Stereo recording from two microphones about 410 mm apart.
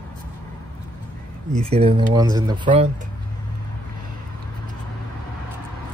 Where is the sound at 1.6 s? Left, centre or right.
Centre.